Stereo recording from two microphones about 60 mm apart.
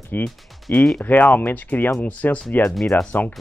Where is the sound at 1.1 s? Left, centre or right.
Left.